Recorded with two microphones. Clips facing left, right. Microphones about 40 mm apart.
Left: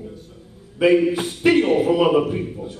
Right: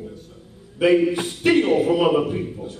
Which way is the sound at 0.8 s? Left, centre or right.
Centre.